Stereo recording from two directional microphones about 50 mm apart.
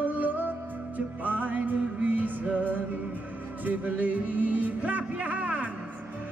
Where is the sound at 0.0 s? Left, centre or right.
Right.